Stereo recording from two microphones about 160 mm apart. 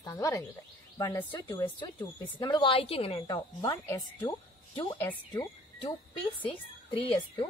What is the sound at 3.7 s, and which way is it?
Speech, 15° left (ahead or behind).